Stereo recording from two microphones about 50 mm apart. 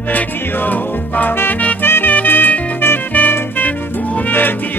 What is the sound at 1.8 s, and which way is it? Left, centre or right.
Music, left.